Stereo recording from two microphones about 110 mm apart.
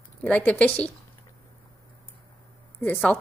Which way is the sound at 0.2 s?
10° left (ahead or behind).